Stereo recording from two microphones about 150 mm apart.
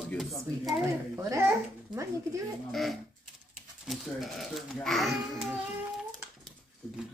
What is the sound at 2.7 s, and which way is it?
A child's voice, centre (ahead or behind).